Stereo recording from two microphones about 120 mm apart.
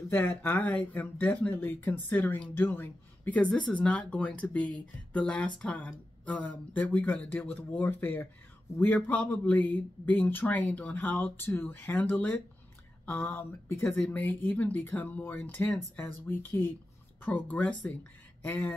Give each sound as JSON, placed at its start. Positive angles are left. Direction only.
{"t": 0.1, "sound": "a man's voice", "side_deg": 20}